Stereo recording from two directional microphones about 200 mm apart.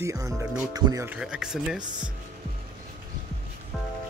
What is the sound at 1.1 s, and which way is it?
Speech, 5° right (ahead or behind).